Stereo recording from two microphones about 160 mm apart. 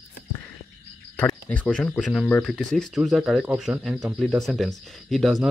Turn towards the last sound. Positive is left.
turn(degrees=0)  # may be behind; listen again after turning